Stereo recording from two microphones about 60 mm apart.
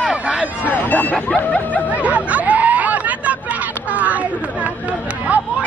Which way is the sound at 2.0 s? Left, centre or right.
Right.